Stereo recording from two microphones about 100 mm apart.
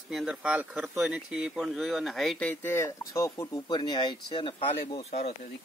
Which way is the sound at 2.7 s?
30° left (ahead or behind).